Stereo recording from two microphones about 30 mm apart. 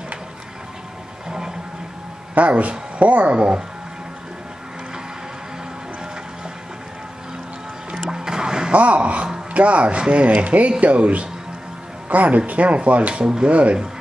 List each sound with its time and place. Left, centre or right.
2.3 s speech: right
3.3 s speech: right
7.9 s music: right
8.7 s speech: right
10.2 s speech: right